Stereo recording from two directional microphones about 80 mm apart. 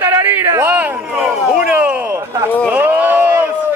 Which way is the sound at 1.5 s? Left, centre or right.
Centre.